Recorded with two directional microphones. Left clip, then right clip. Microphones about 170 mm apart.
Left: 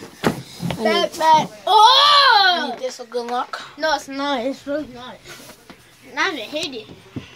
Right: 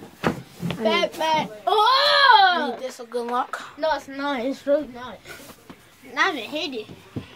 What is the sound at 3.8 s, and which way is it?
Speech, 55° left (ahead or behind).